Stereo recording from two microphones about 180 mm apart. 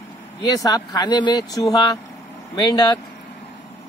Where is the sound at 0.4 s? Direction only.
20° left (ahead or behind).